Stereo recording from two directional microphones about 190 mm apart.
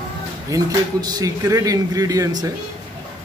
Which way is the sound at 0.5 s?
20° right (ahead or behind).